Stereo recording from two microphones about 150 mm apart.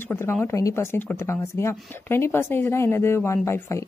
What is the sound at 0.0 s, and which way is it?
Speech, 15° left (ahead or behind).